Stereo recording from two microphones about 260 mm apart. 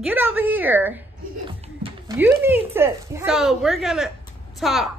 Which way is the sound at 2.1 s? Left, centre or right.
Centre.